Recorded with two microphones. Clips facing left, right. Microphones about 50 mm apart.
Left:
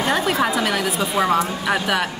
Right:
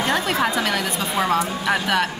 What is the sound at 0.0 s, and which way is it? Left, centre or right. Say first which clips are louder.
Speech: left 1 dB; centre.